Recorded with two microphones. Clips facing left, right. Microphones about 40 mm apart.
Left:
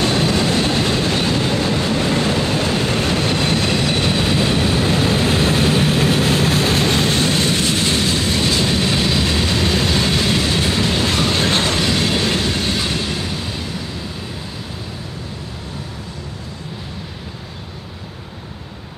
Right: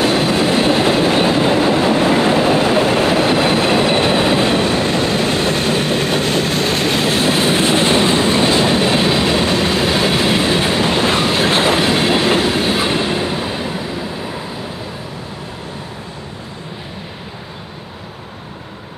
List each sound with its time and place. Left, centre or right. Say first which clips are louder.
0.0 s train: right 3 dB; centre